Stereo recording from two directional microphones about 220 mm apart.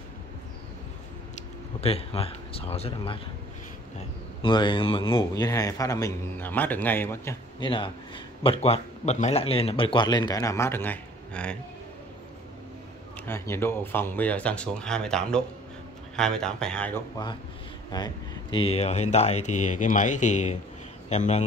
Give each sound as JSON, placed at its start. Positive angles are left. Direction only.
{"t": 1.3, "sound": "speech", "side_deg": 25}
{"t": 4.4, "sound": "a man's voice", "side_deg": 20}
{"t": 7.7, "sound": "a man's voice", "side_deg": 20}
{"t": 13.3, "sound": "speech", "side_deg": 10}
{"t": 17.9, "sound": "speech", "side_deg": 20}